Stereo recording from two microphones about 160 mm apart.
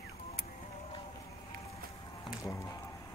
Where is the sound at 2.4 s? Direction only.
20° left (ahead or behind).